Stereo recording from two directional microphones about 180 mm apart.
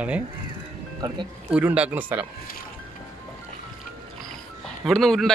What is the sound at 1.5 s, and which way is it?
Speech, 5° right (ahead or behind).